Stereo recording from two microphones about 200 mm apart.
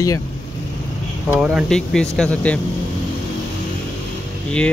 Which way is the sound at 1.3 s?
5° right (ahead or behind).